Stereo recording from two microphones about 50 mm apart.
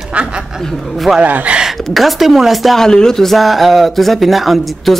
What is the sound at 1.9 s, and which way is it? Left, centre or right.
Speech, centre.